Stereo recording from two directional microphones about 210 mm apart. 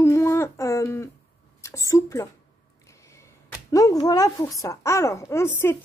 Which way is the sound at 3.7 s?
15° left (ahead or behind).